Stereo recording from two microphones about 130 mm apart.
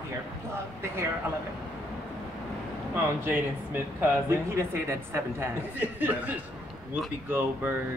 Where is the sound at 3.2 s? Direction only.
15° right (ahead or behind).